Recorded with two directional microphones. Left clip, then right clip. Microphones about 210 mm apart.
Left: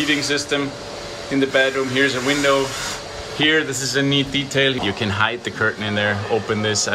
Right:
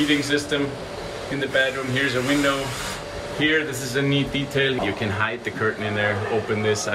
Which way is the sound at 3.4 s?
15° left (ahead or behind).